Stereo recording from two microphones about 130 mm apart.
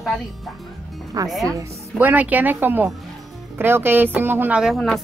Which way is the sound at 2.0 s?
15° right (ahead or behind).